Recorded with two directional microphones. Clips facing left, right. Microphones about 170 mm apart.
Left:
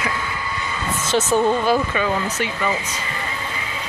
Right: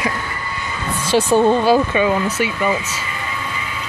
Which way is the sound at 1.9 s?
15° right (ahead or behind).